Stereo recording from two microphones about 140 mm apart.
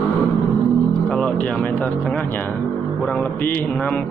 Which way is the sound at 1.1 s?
10° left (ahead or behind).